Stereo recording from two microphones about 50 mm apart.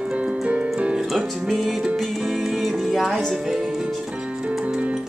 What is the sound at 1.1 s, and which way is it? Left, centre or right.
Music, centre.